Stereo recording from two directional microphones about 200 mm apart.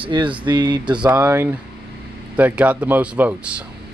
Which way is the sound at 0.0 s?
25° right (ahead or behind).